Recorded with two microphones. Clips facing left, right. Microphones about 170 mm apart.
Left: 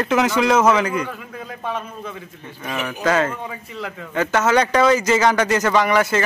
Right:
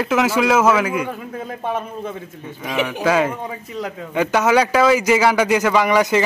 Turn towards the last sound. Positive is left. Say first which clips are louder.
# right 2 dB
turn(degrees=-15)  # may be behind; listen again after turning